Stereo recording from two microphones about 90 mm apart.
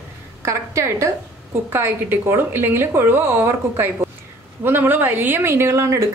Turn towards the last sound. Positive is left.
turn(degrees=-35)  # may be behind; listen again after turning